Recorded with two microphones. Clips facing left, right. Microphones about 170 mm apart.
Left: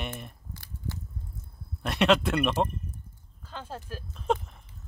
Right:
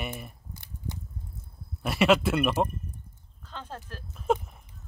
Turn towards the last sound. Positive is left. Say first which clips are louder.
# right 1 dB
turn(degrees=-5)  # may be behind; listen again after turning